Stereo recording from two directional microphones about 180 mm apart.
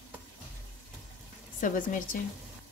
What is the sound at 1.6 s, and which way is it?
Speech, 50° left (ahead or behind).